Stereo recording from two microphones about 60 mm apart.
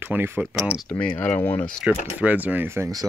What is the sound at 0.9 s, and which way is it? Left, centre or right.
Speech, left.